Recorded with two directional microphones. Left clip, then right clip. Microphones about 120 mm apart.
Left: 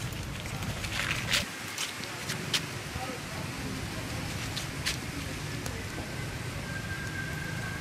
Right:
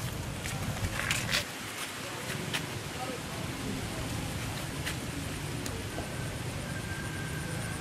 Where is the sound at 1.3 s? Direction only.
20° left (ahead or behind).